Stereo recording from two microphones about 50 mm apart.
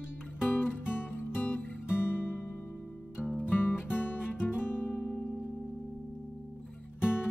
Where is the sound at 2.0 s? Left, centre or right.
Left.